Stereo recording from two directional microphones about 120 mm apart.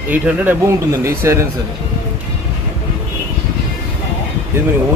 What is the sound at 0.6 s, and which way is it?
Speech, 25° right (ahead or behind).